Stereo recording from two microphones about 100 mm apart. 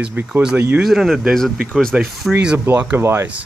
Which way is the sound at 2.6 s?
20° right (ahead or behind).